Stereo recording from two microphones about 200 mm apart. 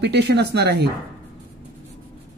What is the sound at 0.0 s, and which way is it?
Speech, 55° right (ahead or behind).